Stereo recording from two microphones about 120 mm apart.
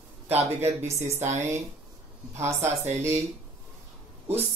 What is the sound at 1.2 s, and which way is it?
Speech, 75° right (ahead or behind).